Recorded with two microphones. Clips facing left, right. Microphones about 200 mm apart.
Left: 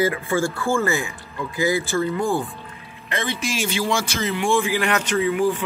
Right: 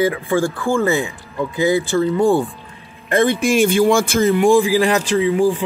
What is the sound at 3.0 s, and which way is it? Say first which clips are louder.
Speech: right 11 dB; 50° right (ahead or behind).